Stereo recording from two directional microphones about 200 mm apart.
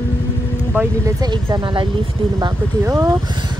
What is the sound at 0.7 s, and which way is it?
Speech, 15° right (ahead or behind).